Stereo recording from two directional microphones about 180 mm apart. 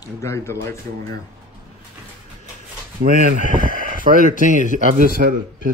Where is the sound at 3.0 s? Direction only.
50° right (ahead or behind).